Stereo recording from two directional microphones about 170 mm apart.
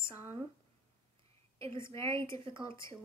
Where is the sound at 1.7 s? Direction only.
15° left (ahead or behind).